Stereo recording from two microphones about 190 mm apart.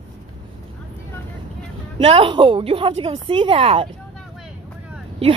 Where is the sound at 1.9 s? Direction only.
30° right (ahead or behind).